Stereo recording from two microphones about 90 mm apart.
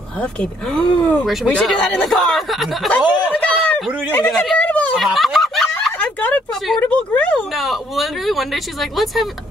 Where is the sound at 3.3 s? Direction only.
15° left (ahead or behind).